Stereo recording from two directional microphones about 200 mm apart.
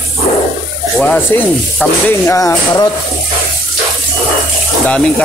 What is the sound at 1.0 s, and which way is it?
Rub, 5° left (ahead or behind).